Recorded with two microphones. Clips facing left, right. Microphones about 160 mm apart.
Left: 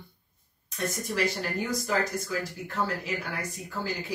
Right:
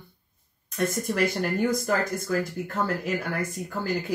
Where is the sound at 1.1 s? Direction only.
50° right (ahead or behind).